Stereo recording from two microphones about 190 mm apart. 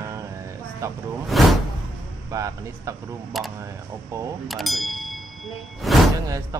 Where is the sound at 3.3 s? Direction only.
Centre (ahead or behind).